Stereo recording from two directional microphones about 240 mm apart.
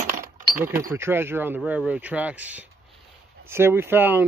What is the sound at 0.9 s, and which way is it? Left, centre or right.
Speech, centre.